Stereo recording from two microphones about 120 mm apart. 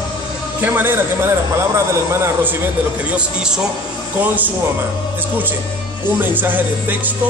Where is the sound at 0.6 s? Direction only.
15° right (ahead or behind).